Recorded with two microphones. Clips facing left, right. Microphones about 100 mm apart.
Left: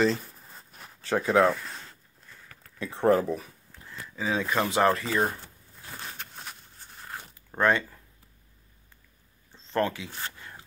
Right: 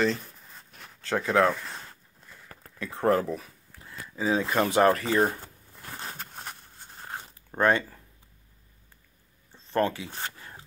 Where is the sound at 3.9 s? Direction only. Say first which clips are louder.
Right 3 dB; 10° right (ahead or behind).